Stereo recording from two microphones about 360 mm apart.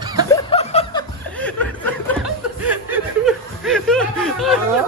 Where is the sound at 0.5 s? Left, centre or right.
Centre.